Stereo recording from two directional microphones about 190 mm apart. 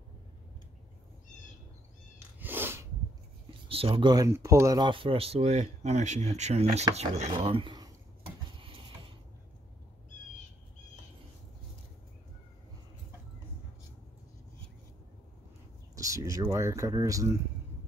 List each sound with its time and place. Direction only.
2.4 s sneeze: 10° right (ahead or behind)
3.4 s speech: 30° right (ahead or behind)
8.5 s mechanisms: 25° right (ahead or behind)
16.0 s speech: 15° right (ahead or behind)